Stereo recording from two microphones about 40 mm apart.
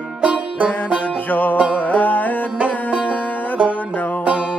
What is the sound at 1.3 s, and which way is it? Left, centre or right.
Music, left.